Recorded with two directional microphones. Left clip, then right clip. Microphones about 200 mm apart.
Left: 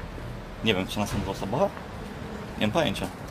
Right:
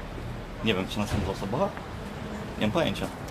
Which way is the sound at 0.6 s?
45° left (ahead or behind).